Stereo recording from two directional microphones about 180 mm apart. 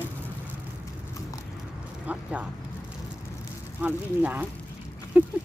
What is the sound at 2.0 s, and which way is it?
Speech, 10° right (ahead or behind).